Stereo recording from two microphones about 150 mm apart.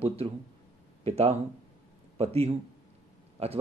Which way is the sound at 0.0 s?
40° right (ahead or behind).